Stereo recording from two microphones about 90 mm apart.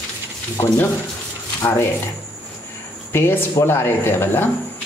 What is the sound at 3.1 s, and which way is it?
Speech, 25° left (ahead or behind).